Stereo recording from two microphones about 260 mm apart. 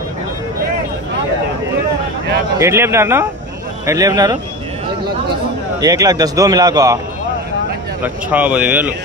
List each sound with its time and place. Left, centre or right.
2.6 s a man's voice: centre
5.8 s a man's voice: centre
8.0 s a man's voice: centre